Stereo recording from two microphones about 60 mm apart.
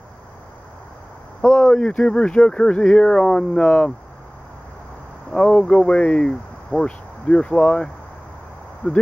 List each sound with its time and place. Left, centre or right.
1.7 s speech: centre
5.3 s speech: centre